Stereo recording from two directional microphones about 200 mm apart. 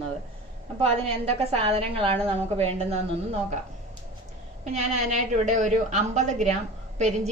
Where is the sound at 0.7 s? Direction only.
30° right (ahead or behind).